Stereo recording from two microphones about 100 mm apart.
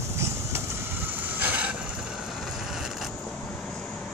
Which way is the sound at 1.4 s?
15° right (ahead or behind).